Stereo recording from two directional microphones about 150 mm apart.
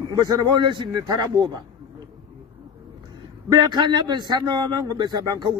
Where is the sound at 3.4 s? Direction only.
25° right (ahead or behind).